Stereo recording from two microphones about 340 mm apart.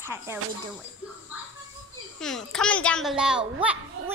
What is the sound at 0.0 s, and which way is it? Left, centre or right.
Speech, centre.